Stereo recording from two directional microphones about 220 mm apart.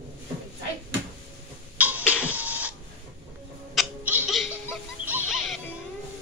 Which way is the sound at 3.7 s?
5° right (ahead or behind).